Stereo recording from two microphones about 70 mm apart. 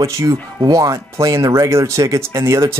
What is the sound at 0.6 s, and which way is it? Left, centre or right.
Speech, right.